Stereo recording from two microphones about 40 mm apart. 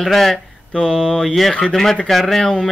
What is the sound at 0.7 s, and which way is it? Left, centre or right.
Speech, left.